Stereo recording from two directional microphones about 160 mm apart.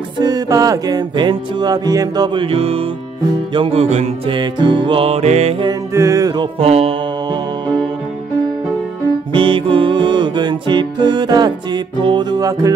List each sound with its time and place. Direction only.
0.2 s music: 25° right (ahead or behind); by 4.1 s 40° right (ahead or behind)
4.3 s music: 30° right (ahead or behind)
5.7 s music: 20° right (ahead or behind)
9.3 s music: 30° right (ahead or behind)